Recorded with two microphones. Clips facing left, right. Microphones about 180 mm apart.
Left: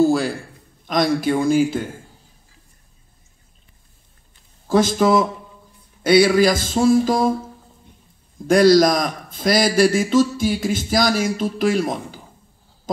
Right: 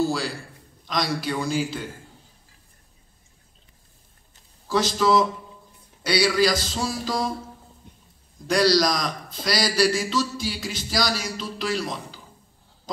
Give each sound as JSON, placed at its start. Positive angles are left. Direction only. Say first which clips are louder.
{"t": 0.0, "sound": "a man's voice", "louder": "left 8 dB", "side_deg": 50}
{"t": 4.6, "sound": "a man's voice", "louder": "left 5 dB", "side_deg": 50}
{"t": 8.5, "sound": "a man's voice", "louder": "left 7 dB", "side_deg": 50}